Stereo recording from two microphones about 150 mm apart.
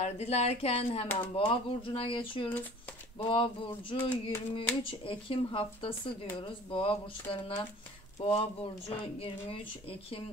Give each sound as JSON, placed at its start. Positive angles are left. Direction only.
{"t": 0.0, "sound": "speech", "side_deg": 45}
{"t": 3.9, "sound": "a sound", "side_deg": 15}
{"t": 4.6, "sound": "speech", "side_deg": 35}